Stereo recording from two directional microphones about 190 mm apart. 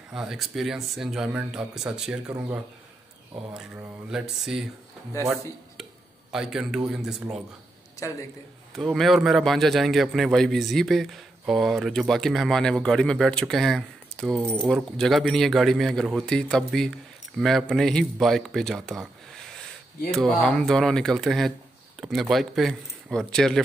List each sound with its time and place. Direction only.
0.1 s a man's voice: 5° right (ahead or behind)
3.5 s a man's voice: 5° right (ahead or behind)
5.1 s speech: 15° left (ahead or behind)
6.3 s a man's voice: centre (ahead or behind)
8.7 s a man's voice: centre (ahead or behind)